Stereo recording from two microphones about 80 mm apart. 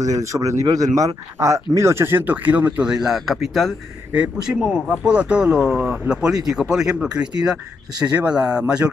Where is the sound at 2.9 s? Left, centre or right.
Centre.